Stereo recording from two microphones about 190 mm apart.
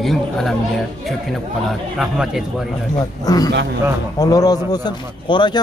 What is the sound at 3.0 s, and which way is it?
A man's voice, 20° left (ahead or behind).